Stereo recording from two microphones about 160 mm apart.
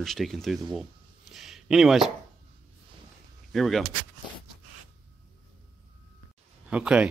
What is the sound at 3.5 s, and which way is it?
Speech, centre (ahead or behind).